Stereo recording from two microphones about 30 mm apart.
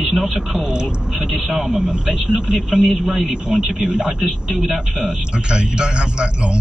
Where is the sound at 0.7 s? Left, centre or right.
Right.